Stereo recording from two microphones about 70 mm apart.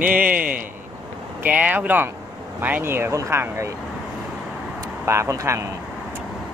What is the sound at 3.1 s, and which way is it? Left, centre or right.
Speech, right.